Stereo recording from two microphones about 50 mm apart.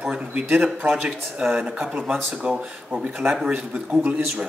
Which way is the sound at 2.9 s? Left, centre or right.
Right.